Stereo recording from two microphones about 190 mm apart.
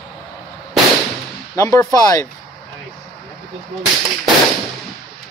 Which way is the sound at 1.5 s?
15° left (ahead or behind).